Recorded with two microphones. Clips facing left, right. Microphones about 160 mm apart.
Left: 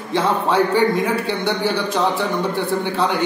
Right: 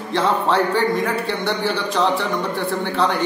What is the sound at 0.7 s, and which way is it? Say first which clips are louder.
Speech: left 2 dB; 15° left (ahead or behind).